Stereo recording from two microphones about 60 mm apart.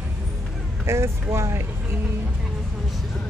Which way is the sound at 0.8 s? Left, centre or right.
Right.